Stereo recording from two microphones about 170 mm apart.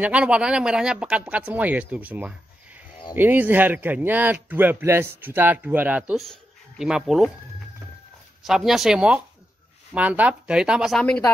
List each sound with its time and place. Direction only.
0.0 s speech: 5° right (ahead or behind)
8.5 s speech: centre (ahead or behind)